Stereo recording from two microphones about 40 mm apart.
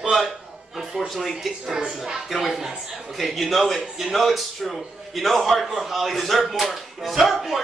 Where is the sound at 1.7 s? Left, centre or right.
Centre.